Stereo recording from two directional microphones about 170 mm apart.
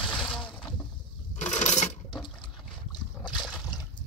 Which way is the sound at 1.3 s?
45° left (ahead or behind).